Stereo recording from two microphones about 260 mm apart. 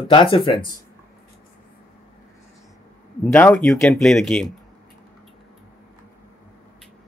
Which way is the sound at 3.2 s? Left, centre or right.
Centre.